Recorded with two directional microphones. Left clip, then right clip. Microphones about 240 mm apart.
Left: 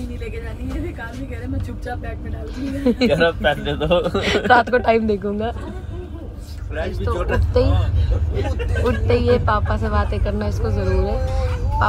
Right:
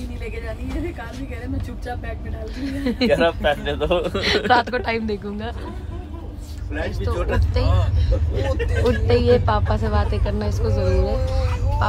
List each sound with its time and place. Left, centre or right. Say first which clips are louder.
2.6 s speech: left 4 dB; centre
3.1 s speech: right 1 dB; left
4.2 s speech: left 2 dB; centre
6.9 s speech: left 3 dB; centre